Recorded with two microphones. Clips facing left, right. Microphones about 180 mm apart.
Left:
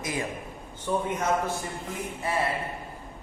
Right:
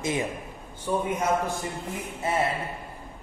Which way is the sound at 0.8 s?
10° right (ahead or behind).